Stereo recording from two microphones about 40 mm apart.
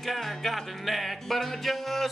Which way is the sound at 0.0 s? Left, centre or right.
Centre.